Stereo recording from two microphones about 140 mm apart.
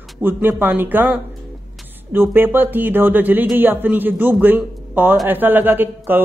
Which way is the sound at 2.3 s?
15° right (ahead or behind).